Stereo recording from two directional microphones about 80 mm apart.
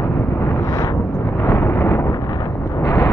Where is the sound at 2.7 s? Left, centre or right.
Left.